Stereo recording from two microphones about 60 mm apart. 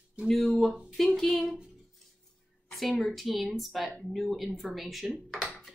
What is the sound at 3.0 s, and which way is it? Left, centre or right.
A woman's voice, centre.